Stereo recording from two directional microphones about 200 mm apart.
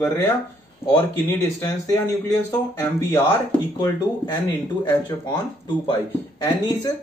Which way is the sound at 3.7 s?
20° left (ahead or behind).